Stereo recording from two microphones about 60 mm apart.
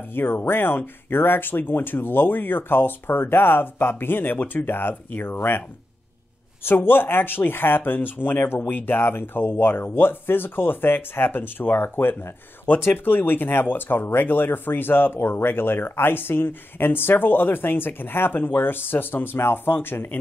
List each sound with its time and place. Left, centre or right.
0.1 s speech: left
6.6 s speech: left